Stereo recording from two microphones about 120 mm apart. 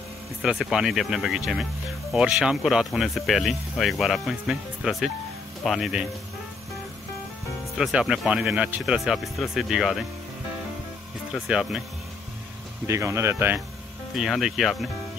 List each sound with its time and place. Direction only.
0.4 s speech: centre (ahead or behind)
7.7 s speech: 5° right (ahead or behind)
8.9 s speech: 5° right (ahead or behind)
11.4 s speech: 5° right (ahead or behind)
12.8 s speech: 25° right (ahead or behind)
14.1 s speech: centre (ahead or behind)